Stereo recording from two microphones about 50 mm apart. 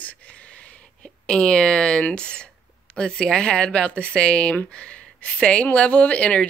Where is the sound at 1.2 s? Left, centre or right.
Centre.